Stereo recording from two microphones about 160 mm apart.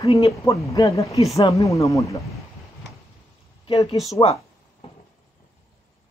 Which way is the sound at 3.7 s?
35° left (ahead or behind).